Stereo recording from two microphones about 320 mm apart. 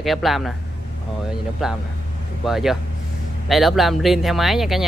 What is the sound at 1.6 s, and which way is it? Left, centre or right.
Speech, centre.